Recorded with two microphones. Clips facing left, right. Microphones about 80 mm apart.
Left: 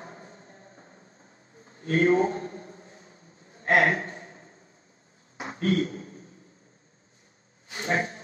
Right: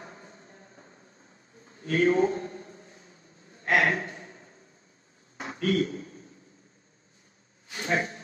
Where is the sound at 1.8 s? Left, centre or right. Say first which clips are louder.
Left 1 dB; left.